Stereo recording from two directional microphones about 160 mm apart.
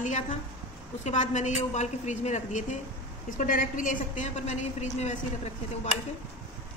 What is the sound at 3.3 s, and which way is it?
A woman's voice, 60° left (ahead or behind).